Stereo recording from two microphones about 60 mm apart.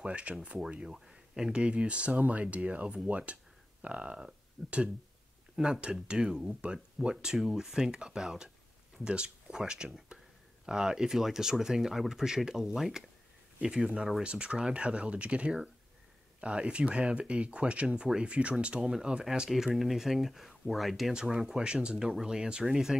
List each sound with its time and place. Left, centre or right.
0.0 s speech: centre